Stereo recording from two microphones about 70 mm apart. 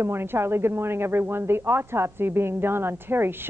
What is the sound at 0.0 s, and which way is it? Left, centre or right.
Speech, right.